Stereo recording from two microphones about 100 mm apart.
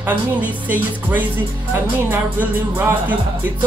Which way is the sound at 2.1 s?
20° right (ahead or behind).